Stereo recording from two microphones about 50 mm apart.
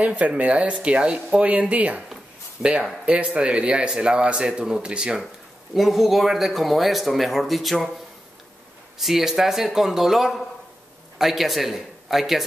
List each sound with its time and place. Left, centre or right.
0.0 s speech: right
1.5 s speech: right
2.6 s speech: centre
3.1 s speech: right
5.8 s speech: centre
8.9 s speech: centre